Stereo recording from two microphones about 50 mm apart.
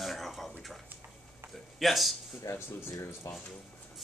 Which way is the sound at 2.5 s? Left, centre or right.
Left.